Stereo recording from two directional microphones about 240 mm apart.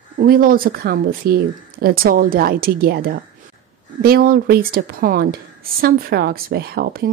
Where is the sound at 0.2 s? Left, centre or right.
Right.